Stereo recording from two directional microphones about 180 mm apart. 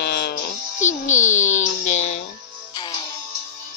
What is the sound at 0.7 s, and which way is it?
Music, 45° left (ahead or behind).